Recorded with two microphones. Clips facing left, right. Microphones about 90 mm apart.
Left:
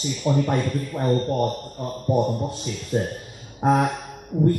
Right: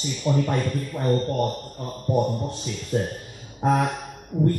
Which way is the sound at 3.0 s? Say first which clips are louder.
Left 1 dB; 25° left (ahead or behind).